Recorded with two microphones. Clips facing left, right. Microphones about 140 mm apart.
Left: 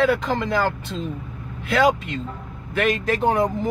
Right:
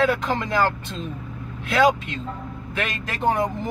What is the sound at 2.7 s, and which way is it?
Speech, 5° left (ahead or behind).